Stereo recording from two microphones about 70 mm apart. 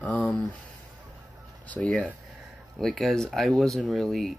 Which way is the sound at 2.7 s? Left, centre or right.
Centre.